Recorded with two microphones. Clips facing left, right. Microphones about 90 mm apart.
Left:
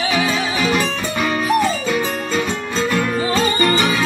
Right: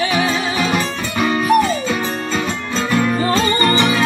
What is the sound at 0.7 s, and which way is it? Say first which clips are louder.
Music: even; 20° right (ahead or behind).